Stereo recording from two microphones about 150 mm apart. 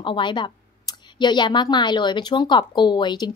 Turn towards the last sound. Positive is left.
turn(degrees=30)  # may be behind; listen again after turning